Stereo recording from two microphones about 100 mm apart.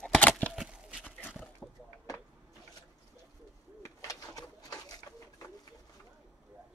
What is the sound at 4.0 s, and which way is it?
Pigeon, 35° left (ahead or behind).